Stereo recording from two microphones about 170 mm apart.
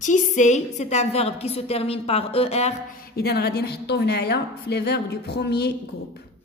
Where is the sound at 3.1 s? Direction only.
70° left (ahead or behind).